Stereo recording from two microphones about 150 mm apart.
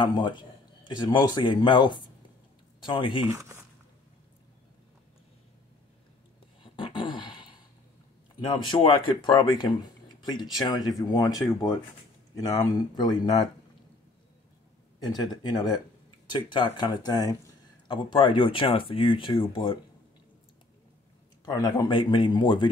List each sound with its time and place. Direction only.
0.0 s speech: 30° left (ahead or behind)
3.3 s speech: 20° right (ahead or behind)
6.6 s a sound: 35° left (ahead or behind)
8.4 s speech: 30° left (ahead or behind)
15.0 s speech: 30° left (ahead or behind)
21.5 s speech: 25° left (ahead or behind)